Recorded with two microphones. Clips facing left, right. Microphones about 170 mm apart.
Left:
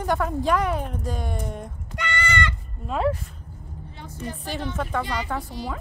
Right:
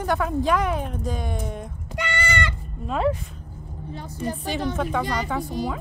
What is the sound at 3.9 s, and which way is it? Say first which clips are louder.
A woman's voice: right 5 dB; 40° right (ahead or behind).